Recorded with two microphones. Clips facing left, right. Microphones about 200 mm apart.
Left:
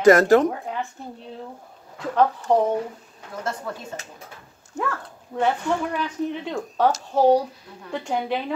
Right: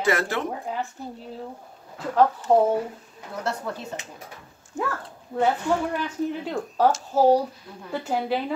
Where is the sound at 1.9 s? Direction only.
5° right (ahead or behind).